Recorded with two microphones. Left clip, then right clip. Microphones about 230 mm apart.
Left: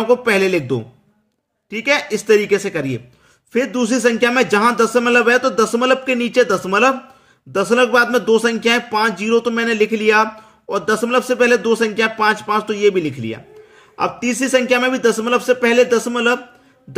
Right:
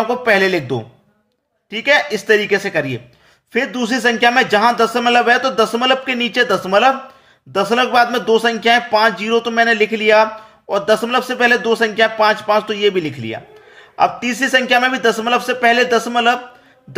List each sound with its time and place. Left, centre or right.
0.0 s a man's voice: centre